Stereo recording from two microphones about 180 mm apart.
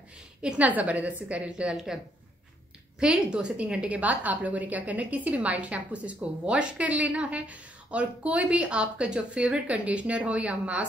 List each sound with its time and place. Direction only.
0.4 s a woman's voice: 5° right (ahead or behind)
3.0 s a woman's voice: 5° right (ahead or behind)